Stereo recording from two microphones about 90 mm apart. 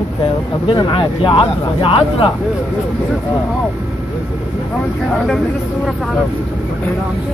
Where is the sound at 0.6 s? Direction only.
60° left (ahead or behind); by 2.3 s 85° left.